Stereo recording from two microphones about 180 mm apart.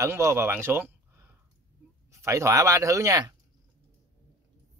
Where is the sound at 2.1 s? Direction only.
15° right (ahead or behind).